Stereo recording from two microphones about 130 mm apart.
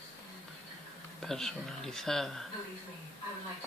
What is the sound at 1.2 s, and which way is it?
Speech, 5° left (ahead or behind).